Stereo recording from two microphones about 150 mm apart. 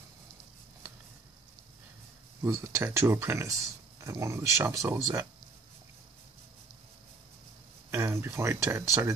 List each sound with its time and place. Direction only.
2.4 s speech: 15° right (ahead or behind)
7.9 s speech: 15° right (ahead or behind)